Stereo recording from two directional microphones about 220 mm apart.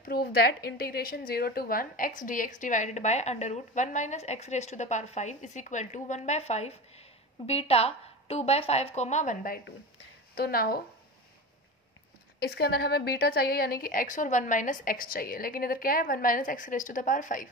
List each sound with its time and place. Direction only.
0.0 s a woman's voice: 45° left (ahead or behind)
12.4 s a woman's voice: 45° left (ahead or behind)